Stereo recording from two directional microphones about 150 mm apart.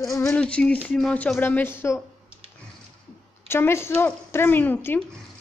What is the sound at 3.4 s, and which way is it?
A woman's voice, 15° left (ahead or behind).